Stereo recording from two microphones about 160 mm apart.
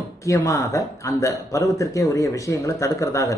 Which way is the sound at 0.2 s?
20° left (ahead or behind).